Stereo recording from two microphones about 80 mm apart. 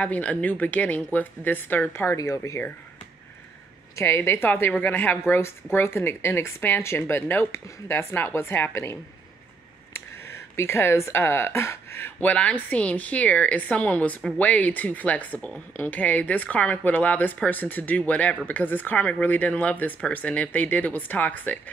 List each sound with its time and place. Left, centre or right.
0.0 s speech: centre
2.1 s a woman's voice: left
3.9 s a woman's voice: left
12.2 s a woman's voice: centre